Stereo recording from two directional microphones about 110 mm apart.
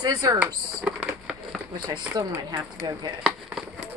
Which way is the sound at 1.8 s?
40° right (ahead or behind).